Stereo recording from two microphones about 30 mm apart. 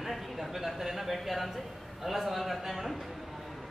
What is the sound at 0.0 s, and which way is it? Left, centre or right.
A man's voice, centre.